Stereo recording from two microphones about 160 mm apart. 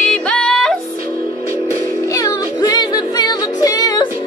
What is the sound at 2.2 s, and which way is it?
Music, 25° left (ahead or behind).